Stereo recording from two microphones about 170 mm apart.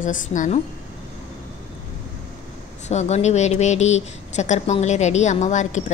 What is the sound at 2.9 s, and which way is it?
A woman's voice, 40° left (ahead or behind).